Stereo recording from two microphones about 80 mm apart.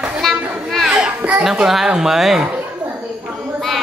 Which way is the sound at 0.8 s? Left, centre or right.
Centre.